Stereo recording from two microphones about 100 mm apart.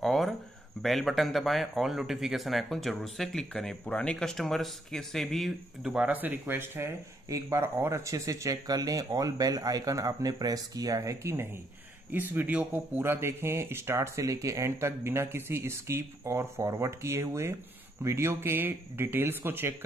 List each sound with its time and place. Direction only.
0.0 s a sound: centre (ahead or behind)
0.8 s speech: centre (ahead or behind)
5.9 s speech: 15° right (ahead or behind); by 11.4 s 30° right (ahead or behind)
12.1 s speech: 20° right (ahead or behind)